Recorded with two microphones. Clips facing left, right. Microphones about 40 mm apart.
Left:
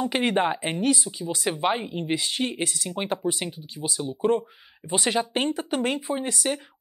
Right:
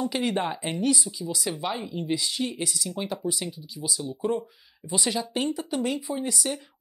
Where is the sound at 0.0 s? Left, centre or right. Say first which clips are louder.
Left 3 dB; left.